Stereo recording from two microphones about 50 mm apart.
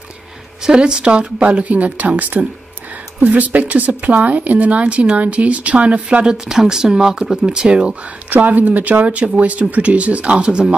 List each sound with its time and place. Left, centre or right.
0.7 s speech: centre
6.2 s speech: centre
8.3 s speech: right; by 10.8 s centre